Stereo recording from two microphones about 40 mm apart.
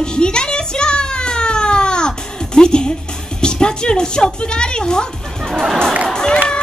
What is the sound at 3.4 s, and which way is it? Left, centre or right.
A child's voice, left.